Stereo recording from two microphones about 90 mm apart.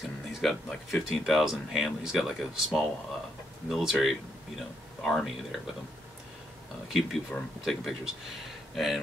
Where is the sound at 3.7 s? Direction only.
Centre (ahead or behind).